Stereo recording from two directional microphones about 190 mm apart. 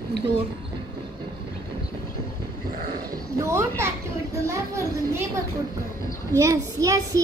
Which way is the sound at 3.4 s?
15° right (ahead or behind).